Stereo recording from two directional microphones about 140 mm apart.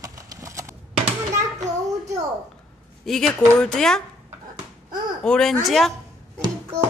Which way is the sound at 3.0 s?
5° left (ahead or behind).